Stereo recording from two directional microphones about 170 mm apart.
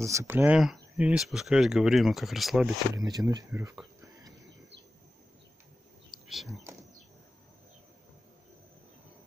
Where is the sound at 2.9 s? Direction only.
20° right (ahead or behind).